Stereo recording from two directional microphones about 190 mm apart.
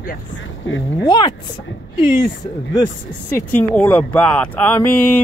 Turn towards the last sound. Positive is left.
turn(degrees=10)  # may be behind; listen again after turning